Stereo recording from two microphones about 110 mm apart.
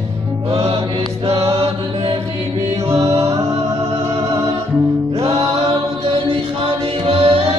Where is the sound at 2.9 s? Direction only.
65° right (ahead or behind).